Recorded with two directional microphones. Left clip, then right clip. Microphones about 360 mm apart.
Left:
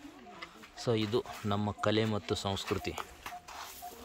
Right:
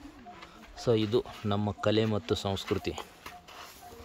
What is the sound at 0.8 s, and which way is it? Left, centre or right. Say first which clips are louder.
A man's voice: right 5 dB; centre.